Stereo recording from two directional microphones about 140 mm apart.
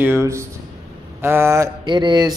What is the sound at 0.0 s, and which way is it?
A man's voice, 20° right (ahead or behind).